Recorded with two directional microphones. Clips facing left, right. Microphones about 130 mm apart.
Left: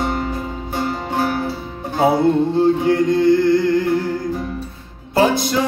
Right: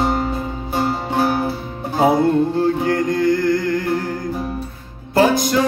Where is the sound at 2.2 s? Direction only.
25° left (ahead or behind).